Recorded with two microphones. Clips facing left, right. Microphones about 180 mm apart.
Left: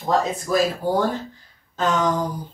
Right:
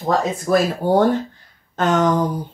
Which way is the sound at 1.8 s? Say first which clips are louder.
Right 4 dB; 55° right (ahead or behind).